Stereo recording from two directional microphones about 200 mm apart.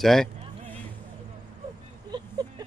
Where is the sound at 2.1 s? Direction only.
20° right (ahead or behind).